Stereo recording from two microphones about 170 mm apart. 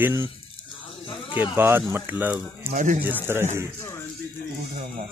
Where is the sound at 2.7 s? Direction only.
50° right (ahead or behind).